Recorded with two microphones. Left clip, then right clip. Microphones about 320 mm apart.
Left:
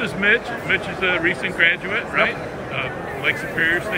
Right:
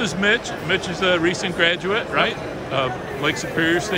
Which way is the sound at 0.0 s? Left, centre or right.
Centre.